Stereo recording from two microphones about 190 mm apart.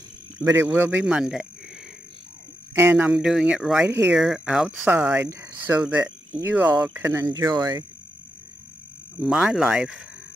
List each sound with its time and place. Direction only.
0.4 s speech: 15° right (ahead or behind)
2.7 s speech: 10° right (ahead or behind)
9.2 s speech: centre (ahead or behind)